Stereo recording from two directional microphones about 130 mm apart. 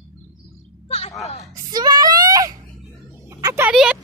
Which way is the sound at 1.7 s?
30° right (ahead or behind).